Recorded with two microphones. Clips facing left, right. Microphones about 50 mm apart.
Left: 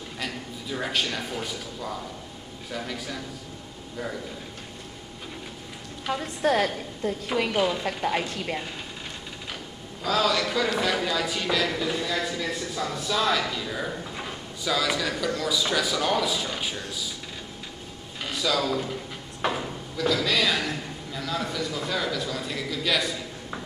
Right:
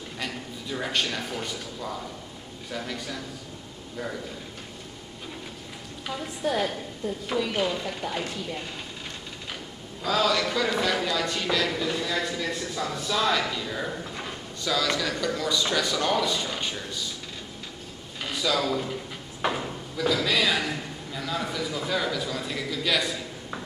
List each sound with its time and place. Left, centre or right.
0.2 s a sound: centre
2.7 s speech: centre
6.1 s a woman's voice: left
7.5 s speech: centre
8.0 s a woman's voice: left
10.0 s speech: centre
18.2 s speech: centre